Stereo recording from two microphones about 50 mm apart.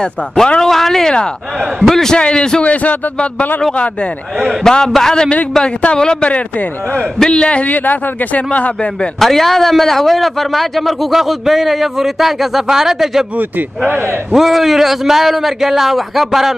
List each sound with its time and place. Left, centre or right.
0.0 s a man's voice: centre
2.0 s speech: centre
2.6 s a man's voice: left
4.5 s a man's voice: centre; by 8.7 s left
9.2 s a man's voice: centre
13.4 s speech: right
14.3 s a man's voice: centre